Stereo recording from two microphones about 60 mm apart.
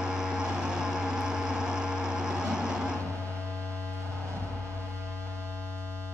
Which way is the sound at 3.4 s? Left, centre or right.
Right.